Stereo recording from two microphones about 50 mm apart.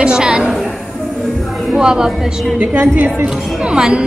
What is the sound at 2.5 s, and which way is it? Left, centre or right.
Speech, right.